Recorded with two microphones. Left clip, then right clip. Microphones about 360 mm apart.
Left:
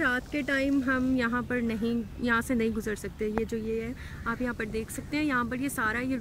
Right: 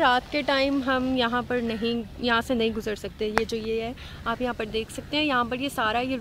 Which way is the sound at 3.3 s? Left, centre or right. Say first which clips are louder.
Right 7 dB; right.